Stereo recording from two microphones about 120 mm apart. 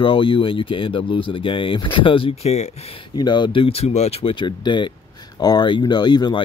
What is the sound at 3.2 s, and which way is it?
Speech, 40° left (ahead or behind).